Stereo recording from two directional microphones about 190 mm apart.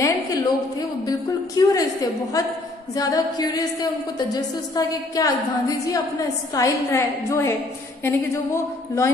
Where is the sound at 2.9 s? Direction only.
20° left (ahead or behind).